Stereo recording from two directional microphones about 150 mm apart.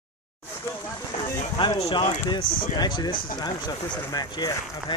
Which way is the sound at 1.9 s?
30° left (ahead or behind).